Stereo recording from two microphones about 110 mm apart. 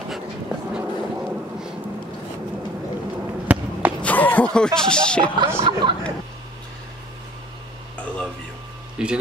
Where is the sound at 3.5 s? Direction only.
10° right (ahead or behind).